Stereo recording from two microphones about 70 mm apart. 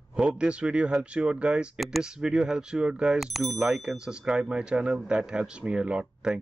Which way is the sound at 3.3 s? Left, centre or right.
Centre.